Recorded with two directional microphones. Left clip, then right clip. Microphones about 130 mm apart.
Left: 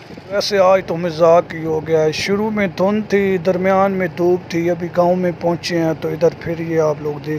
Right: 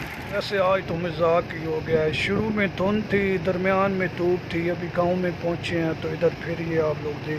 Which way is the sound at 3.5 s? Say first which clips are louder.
Left 8 dB; 35° left (ahead or behind).